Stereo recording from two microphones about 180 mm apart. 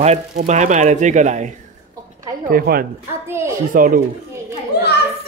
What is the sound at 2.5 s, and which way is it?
Speech, 55° right (ahead or behind).